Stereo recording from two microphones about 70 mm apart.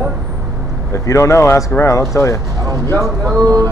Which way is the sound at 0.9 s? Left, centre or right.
Left.